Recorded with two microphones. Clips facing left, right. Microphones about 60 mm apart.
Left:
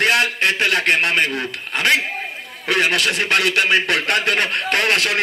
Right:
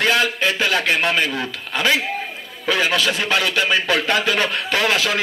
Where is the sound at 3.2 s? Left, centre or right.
Left.